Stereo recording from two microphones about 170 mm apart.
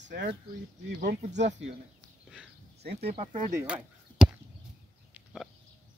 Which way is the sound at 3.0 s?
35° right (ahead or behind).